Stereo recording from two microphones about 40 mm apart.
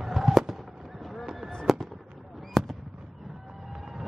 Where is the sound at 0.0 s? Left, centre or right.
Centre.